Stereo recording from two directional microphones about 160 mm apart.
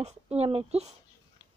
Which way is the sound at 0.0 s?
40° right (ahead or behind).